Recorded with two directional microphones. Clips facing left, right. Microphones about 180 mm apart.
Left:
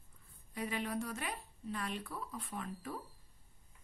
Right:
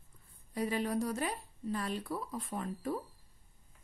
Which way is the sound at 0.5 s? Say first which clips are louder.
Right 5 dB; 35° right (ahead or behind).